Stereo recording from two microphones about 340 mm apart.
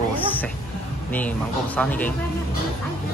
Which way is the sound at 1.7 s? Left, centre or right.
Centre.